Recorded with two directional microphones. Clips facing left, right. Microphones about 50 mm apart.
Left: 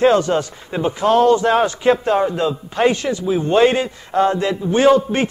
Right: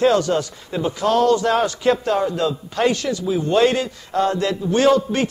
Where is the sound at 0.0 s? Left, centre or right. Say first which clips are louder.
Left 2 dB; left.